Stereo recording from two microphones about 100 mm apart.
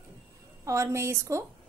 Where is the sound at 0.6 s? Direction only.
30° right (ahead or behind).